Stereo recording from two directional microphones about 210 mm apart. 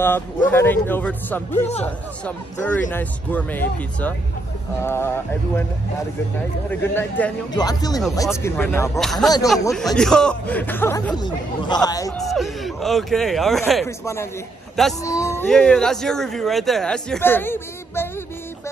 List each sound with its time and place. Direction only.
0.0 s speech: 10° left (ahead or behind)
6.7 s a man's voice: 10° left (ahead or behind)
12.2 s a man's voice: centre (ahead or behind)
13.8 s speech: 15° left (ahead or behind)
15.0 s a sound: 15° left (ahead or behind)
15.4 s a man's voice: 5° left (ahead or behind)